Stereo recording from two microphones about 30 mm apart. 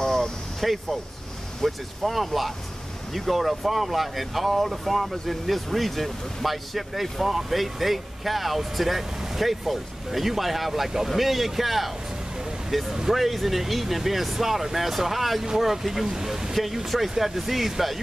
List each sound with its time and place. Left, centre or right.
0.0 s a sound: centre
0.6 s speech: centre
16.5 s speech: centre